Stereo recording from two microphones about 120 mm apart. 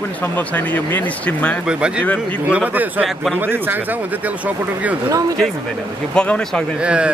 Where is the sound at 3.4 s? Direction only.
15° right (ahead or behind).